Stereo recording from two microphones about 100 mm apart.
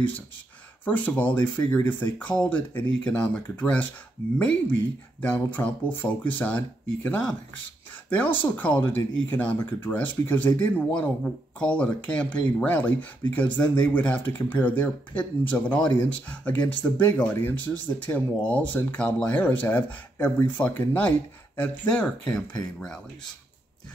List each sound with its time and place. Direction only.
0.8 s speech: 15° left (ahead or behind)